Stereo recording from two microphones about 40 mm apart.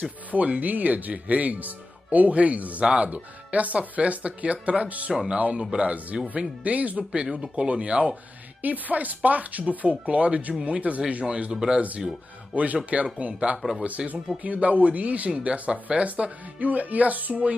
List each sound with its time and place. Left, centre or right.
0.3 s speech: right
2.8 s speech: right
5.1 s speech: centre
6.3 s speech: right
8.6 s speech: right
12.5 s speech: right